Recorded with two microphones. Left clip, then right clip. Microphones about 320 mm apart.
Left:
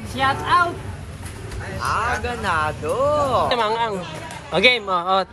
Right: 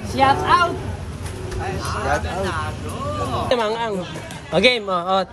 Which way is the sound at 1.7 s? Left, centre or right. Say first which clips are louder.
Left 2 dB; centre.